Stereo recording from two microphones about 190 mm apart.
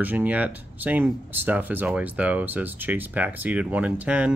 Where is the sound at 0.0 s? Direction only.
10° right (ahead or behind).